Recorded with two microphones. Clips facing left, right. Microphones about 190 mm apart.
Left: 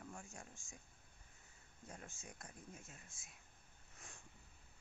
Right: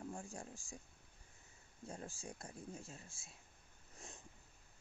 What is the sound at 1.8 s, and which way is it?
Speech, 30° right (ahead or behind).